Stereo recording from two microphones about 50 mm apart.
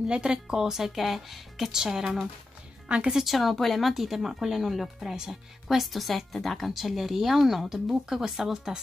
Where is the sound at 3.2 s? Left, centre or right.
Centre.